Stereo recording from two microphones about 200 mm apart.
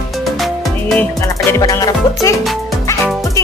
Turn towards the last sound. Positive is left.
turn(degrees=15)  # may be behind; listen again after turning